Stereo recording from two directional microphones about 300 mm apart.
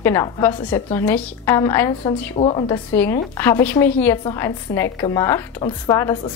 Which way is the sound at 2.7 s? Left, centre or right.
Centre.